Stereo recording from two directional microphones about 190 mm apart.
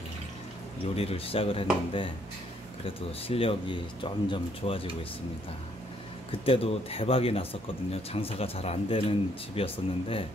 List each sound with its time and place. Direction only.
0.9 s speech: 30° left (ahead or behind)
3.3 s speech: 30° left (ahead or behind)
6.4 s speech: 30° left (ahead or behind)